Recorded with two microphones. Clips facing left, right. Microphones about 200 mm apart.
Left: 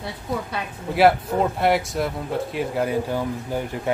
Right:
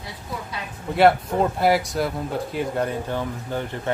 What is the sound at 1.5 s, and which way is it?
Speech, centre (ahead or behind).